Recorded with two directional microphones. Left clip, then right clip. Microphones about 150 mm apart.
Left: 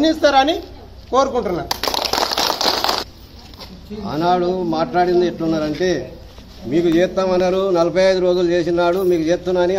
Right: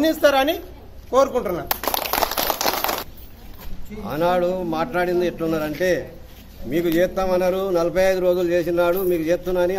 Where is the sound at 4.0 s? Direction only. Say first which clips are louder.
Left 2 dB; 15° right (ahead or behind).